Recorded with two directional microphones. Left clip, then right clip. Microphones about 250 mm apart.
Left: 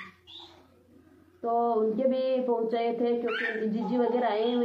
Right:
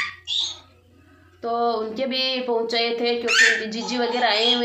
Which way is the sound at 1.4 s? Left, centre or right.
Centre.